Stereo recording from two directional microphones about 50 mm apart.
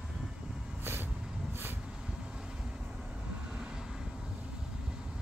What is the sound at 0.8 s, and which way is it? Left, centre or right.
Vehicle, right.